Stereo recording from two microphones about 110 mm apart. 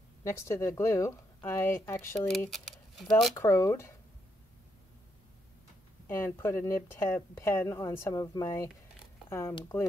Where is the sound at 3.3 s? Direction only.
25° left (ahead or behind).